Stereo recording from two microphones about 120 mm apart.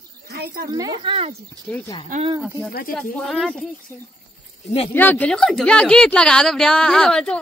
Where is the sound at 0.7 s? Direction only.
35° right (ahead or behind).